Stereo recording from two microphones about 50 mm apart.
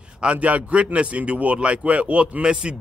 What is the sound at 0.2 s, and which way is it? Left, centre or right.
A man's voice, right.